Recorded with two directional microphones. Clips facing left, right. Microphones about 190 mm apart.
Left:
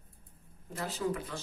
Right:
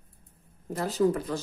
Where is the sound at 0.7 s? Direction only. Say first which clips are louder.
Right 9 dB; 40° right (ahead or behind).